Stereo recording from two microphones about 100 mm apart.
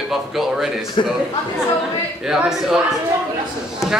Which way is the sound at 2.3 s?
5° right (ahead or behind).